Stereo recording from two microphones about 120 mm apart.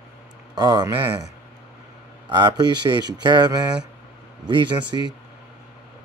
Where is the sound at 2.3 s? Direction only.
35° right (ahead or behind).